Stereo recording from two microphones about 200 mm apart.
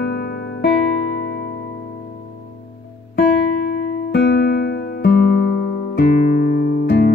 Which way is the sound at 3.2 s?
65° left (ahead or behind).